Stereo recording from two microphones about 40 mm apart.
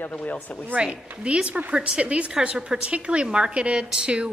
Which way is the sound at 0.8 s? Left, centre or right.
Right.